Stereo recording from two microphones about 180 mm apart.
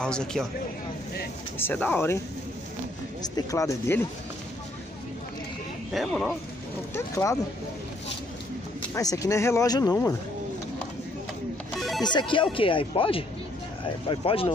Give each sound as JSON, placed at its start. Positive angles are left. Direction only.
{"t": 0.0, "sound": "speech", "side_deg": 5}
{"t": 1.6, "sound": "speech", "side_deg": 10}
{"t": 3.3, "sound": "speech", "side_deg": 15}
{"t": 5.9, "sound": "speech", "side_deg": 0}
{"t": 6.9, "sound": "speech", "side_deg": 15}
{"t": 8.9, "sound": "speech", "side_deg": 20}
{"t": 11.7, "sound": "music", "side_deg": 0}
{"t": 12.0, "sound": "speech", "side_deg": 25}